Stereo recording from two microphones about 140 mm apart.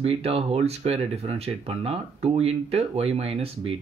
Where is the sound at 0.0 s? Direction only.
45° right (ahead or behind).